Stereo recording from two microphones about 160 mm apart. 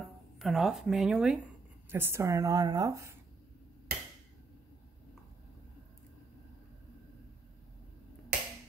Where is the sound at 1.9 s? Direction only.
15° right (ahead or behind).